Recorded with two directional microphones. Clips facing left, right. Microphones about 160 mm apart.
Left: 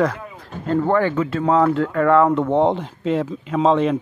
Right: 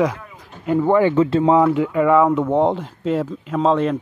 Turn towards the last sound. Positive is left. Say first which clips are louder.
# left 1 dB
turn(degrees=0)  # may be behind; listen again after turning